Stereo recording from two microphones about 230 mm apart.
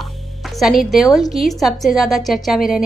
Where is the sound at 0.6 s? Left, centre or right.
Centre.